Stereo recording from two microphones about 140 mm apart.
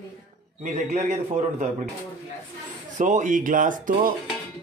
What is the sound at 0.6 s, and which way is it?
A man's voice, 60° right (ahead or behind).